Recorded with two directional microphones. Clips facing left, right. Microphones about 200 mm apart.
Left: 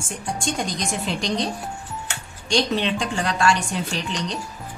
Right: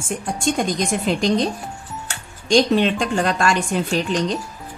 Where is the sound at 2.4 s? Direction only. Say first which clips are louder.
Right 6 dB; 50° right (ahead or behind).